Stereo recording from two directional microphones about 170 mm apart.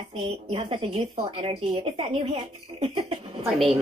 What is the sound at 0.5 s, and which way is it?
Speech, 35° right (ahead or behind).